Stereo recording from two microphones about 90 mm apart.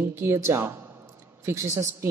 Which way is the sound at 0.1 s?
30° right (ahead or behind).